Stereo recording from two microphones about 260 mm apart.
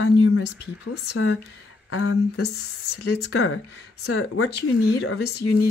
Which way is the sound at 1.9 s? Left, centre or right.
Left.